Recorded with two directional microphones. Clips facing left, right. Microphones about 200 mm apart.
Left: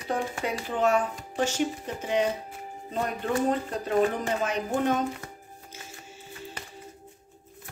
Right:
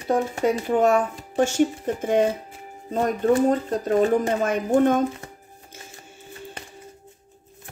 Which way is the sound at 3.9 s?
45° right (ahead or behind).